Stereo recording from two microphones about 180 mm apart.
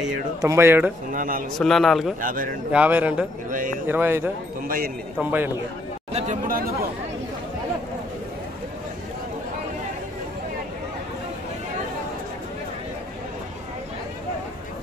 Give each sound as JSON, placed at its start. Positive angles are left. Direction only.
{"t": 0.4, "sound": "speech", "side_deg": -15}
{"t": 1.1, "sound": "speech", "side_deg": -50}
{"t": 1.6, "sound": "speech", "side_deg": 0}
{"t": 2.2, "sound": "speech", "side_deg": -50}
{"t": 2.7, "sound": "speech", "side_deg": -10}
{"t": 3.4, "sound": "speech", "side_deg": -45}
{"t": 3.9, "sound": "speech", "side_deg": -10}
{"t": 4.6, "sound": "speech", "side_deg": -55}
{"t": 5.2, "sound": "speech", "side_deg": -10}
{"t": 6.1, "sound": "speech", "side_deg": -45}